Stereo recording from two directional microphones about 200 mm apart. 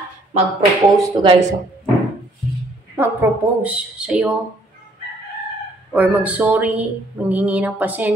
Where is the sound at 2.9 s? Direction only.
10° right (ahead or behind).